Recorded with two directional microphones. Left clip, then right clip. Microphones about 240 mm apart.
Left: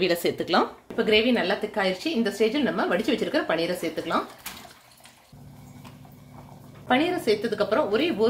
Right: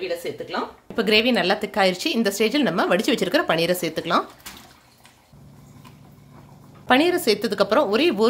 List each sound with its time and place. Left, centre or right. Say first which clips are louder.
0.0 s speech: left 4 dB; left
0.9 s speech: right 3 dB; right
6.9 s speech: right 4 dB; right